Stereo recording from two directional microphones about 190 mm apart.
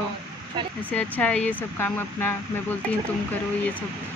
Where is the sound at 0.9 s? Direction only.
10° left (ahead or behind).